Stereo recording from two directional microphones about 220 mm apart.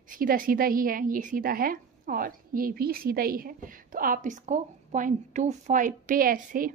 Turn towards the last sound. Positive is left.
turn(degrees=-40)  # may be behind; listen again after turning